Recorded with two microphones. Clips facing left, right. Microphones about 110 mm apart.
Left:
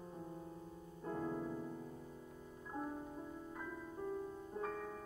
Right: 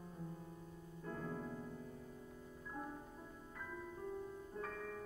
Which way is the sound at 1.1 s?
20° left (ahead or behind).